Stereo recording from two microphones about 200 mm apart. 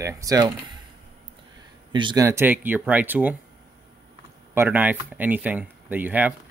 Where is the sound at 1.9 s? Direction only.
25° right (ahead or behind).